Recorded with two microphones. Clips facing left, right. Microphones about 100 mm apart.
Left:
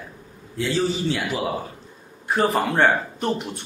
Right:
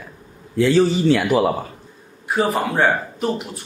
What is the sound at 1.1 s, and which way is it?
Speech, 65° right (ahead or behind).